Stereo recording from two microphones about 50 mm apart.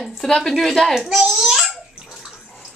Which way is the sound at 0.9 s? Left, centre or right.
Centre.